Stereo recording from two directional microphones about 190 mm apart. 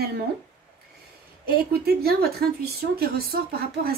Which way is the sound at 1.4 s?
55° right (ahead or behind).